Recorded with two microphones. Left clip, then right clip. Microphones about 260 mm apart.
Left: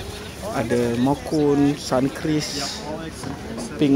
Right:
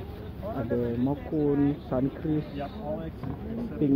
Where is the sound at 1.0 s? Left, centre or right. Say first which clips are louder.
Left 8 dB; left.